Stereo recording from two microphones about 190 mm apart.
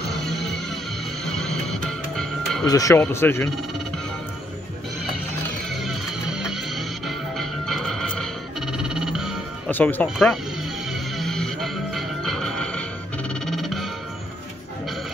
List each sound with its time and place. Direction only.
0.3 s music: centre (ahead or behind)
2.6 s speech: 20° left (ahead or behind)
5.7 s music: centre (ahead or behind)
9.7 s speech: 10° left (ahead or behind)
10.1 s speech: centre (ahead or behind)
10.9 s music: centre (ahead or behind)